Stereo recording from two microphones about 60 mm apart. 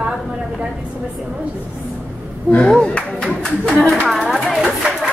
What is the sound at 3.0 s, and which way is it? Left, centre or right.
Music, centre.